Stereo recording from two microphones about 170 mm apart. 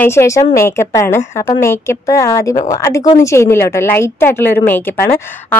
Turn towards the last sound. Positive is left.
turn(degrees=10)  # may be behind; listen again after turning